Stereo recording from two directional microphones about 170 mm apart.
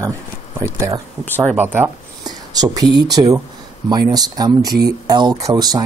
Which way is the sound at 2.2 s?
20° right (ahead or behind).